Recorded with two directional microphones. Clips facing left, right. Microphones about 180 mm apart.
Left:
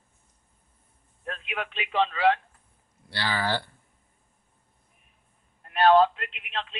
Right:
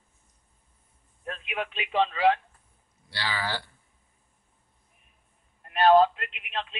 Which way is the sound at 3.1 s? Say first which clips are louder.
Left 4 dB; 55° left (ahead or behind).